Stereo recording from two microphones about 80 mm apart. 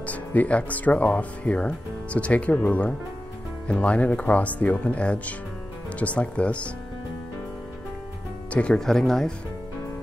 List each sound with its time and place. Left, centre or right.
0.0 s speech: centre
8.5 s speech: centre